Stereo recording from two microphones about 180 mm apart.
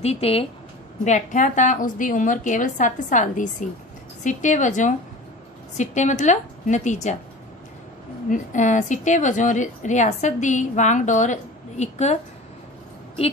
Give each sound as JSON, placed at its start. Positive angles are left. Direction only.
{"t": 0.0, "sound": "a woman's voice", "side_deg": 35}
{"t": 8.3, "sound": "a woman's voice", "side_deg": 45}